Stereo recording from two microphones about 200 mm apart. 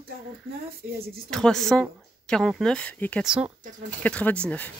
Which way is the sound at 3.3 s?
5° right (ahead or behind).